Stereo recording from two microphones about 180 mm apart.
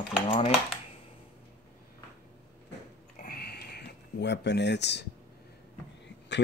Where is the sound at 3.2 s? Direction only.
55° left (ahead or behind).